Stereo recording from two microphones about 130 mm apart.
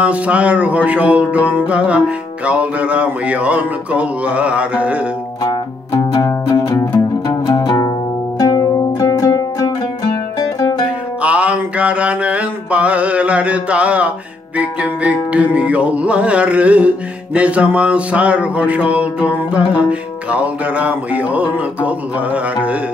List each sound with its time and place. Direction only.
0.0 s music: 10° right (ahead or behind)
6.2 s music: 25° left (ahead or behind)
11.2 s mantra: 10° right (ahead or behind)
14.6 s music: 10° right (ahead or behind)